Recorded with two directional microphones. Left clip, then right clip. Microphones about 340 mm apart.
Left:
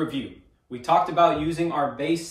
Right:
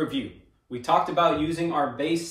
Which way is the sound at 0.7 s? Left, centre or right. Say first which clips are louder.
Left 2 dB; centre.